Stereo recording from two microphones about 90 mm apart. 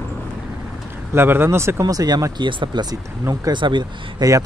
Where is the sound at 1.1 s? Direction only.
25° right (ahead or behind); by 2.4 s 45° right (ahead or behind).